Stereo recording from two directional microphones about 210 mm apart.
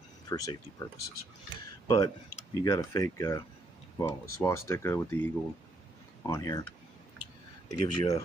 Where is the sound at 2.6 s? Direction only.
15° left (ahead or behind).